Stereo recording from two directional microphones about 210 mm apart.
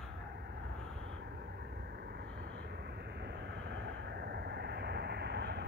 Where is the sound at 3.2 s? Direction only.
55° right (ahead or behind).